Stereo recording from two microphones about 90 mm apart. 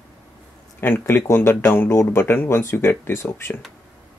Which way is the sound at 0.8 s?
25° left (ahead or behind).